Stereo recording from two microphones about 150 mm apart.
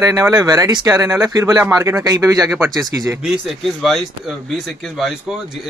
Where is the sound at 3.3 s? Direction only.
Centre (ahead or behind).